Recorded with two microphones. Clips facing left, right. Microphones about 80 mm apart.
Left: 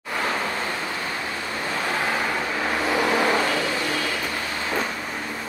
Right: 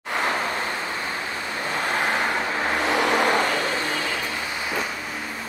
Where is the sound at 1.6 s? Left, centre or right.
Centre.